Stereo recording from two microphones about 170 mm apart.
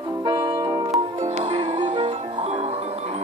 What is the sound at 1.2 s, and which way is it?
Music, 40° right (ahead or behind).